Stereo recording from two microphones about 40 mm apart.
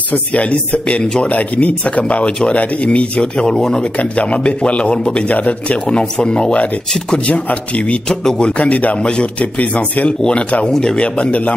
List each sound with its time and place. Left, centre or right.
0.1 s speech: left
3.2 s speech: centre
4.2 s speech: left
5.3 s speech: left
5.9 s speech: left
10.7 s speech: centre
11.0 s speech: left